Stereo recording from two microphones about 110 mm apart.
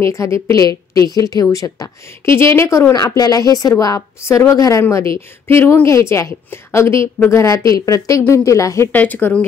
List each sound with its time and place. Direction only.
0.0 s a woman's voice: 30° left (ahead or behind)
2.9 s a woman's voice: 35° left (ahead or behind)
8.9 s speech: 15° left (ahead or behind)